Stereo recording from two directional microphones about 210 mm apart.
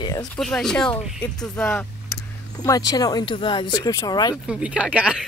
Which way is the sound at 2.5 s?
15° left (ahead or behind).